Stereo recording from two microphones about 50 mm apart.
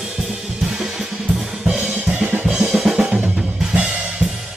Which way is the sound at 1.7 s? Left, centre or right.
Centre.